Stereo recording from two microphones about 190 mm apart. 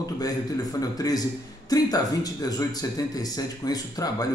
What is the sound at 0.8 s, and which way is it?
A man's voice, 20° left (ahead or behind).